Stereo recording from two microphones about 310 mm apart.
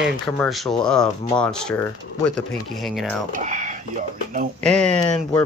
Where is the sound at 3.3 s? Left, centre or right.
Right.